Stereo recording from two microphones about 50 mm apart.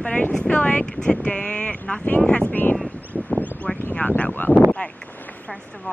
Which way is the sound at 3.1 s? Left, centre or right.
Centre.